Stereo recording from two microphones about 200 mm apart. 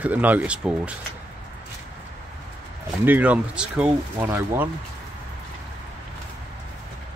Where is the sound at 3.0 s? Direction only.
10° right (ahead or behind).